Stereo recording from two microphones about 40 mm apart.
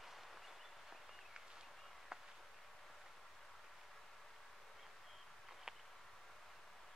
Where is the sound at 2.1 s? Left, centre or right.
Centre.